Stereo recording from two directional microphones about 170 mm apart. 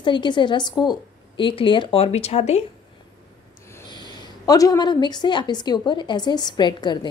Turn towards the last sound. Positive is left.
turn(degrees=25)  # may be behind; listen again after turning